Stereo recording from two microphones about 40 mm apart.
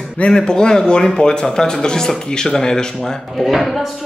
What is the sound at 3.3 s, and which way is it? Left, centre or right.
Speech, centre.